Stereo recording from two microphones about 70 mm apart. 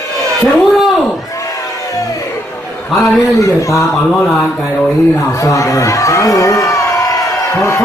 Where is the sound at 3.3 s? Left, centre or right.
Left.